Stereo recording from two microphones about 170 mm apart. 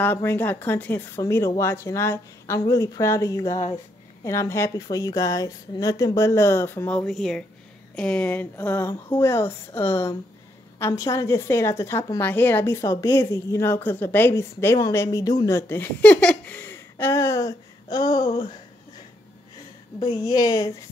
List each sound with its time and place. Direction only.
0.0 s a woman's voice: 10° left (ahead or behind)
20.0 s speech: 20° left (ahead or behind)